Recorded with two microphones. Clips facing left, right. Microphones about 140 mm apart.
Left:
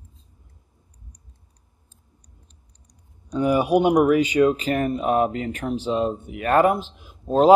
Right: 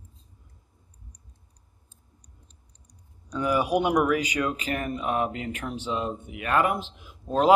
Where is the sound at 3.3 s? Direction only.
25° left (ahead or behind).